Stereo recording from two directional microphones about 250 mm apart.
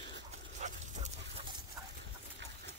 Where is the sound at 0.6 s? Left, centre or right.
Right.